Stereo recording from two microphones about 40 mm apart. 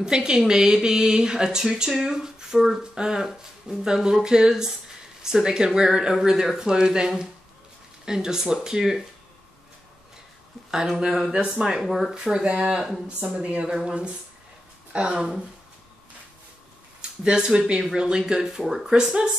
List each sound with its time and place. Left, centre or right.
0.0 s speech: centre
11.0 s speech: centre
11.8 s speech: centre
12.1 s speech: centre
13.4 s speech: right
13.7 s speech: right
17.0 s speech: right